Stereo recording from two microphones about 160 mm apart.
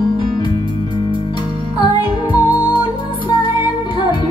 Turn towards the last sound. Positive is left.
turn(degrees=25)  # may be behind; listen again after turning